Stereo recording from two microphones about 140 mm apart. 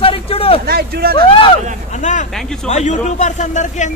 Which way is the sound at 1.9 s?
60° left (ahead or behind).